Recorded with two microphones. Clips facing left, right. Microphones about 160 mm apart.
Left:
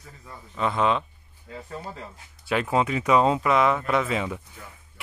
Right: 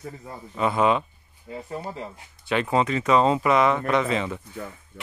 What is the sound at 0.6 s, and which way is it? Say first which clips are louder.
Speech: right 2 dB; 5° right (ahead or behind).